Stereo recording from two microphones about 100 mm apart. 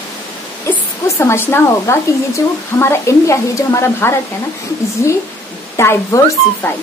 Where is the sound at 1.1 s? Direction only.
20° left (ahead or behind).